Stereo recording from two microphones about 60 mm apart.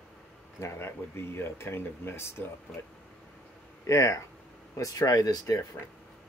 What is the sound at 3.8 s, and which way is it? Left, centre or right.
Speech, left.